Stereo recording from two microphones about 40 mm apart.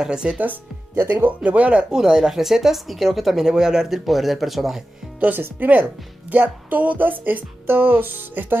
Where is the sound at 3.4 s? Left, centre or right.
Centre.